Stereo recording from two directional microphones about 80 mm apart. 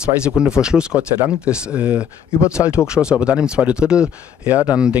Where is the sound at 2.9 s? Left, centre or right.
Centre.